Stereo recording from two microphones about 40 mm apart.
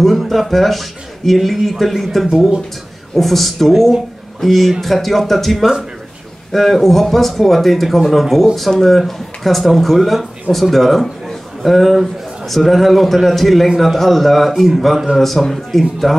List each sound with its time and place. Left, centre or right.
0.0 s speech: centre
16.0 s speech: centre